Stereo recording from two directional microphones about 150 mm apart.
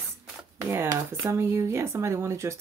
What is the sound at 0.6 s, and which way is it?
Speech, 15° right (ahead or behind).